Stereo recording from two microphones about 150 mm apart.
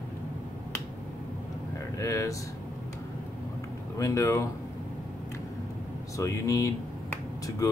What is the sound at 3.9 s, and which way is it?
Speech, 20° left (ahead or behind).